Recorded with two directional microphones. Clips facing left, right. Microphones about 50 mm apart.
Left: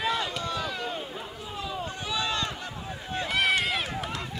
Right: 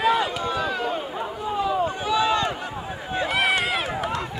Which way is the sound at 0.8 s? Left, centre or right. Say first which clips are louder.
Right 7 dB; right.